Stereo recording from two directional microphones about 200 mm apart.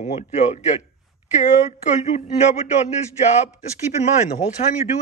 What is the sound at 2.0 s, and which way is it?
Speech, 35° left (ahead or behind).